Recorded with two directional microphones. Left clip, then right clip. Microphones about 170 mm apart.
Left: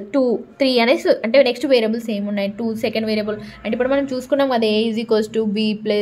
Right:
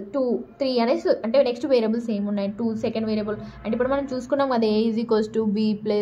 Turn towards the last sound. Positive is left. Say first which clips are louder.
# left 4 dB
turn(degrees=25)  # may be behind; listen again after turning